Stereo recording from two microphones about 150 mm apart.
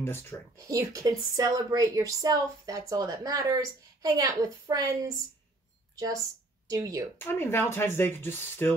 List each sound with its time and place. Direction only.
0.0 s speech: 15° left (ahead or behind)
0.7 s a woman's voice: 20° right (ahead or behind)
6.7 s a woman's voice: 25° right (ahead or behind)
7.2 s speech: 15° left (ahead or behind)